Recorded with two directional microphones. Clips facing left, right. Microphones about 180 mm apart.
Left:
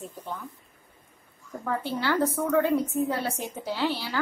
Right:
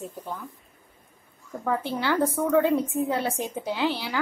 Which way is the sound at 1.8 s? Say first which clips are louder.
Left 1 dB; 15° right (ahead or behind).